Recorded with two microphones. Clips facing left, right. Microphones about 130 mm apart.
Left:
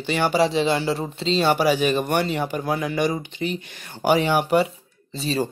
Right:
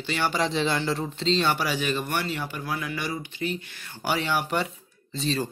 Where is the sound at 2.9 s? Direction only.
20° left (ahead or behind).